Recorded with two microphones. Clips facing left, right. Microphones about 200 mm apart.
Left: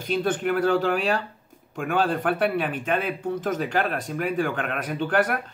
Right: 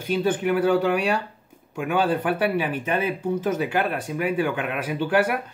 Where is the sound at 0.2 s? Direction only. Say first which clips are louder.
Right 2 dB; 5° right (ahead or behind).